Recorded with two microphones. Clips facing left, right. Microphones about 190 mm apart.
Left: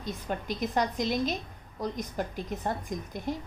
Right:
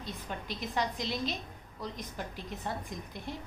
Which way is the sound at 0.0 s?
45° left (ahead or behind).